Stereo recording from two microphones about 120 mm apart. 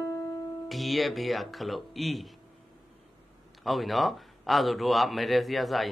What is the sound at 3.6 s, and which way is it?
A man's voice, centre (ahead or behind).